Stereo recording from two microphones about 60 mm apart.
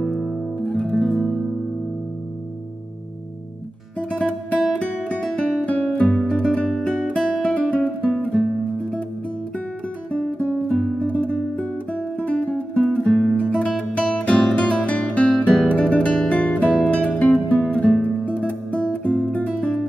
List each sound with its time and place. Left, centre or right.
0.0 s guitar: centre
0.7 s music: centre
4.1 s music: left
6.5 s guitar: centre
10.7 s music: centre
11.0 s music: left